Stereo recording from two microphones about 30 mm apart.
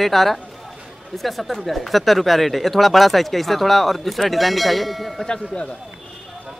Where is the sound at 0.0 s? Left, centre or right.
Centre.